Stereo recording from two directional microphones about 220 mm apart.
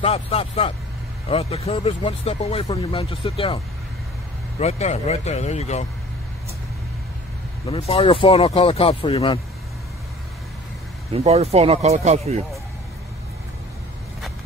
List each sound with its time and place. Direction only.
0.0 s speech: 25° left (ahead or behind)
7.6 s speech: 25° left (ahead or behind)
11.1 s speech: 30° right (ahead or behind)